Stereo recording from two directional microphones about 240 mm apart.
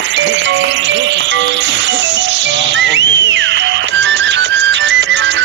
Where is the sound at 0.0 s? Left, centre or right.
Right.